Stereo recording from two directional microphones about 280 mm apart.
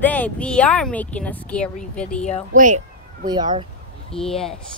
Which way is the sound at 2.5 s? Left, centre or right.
Right.